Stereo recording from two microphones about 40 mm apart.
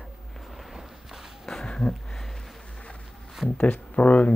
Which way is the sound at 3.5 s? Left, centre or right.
Left.